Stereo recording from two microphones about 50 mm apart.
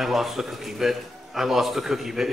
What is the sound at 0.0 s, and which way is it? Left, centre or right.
A man's voice, centre.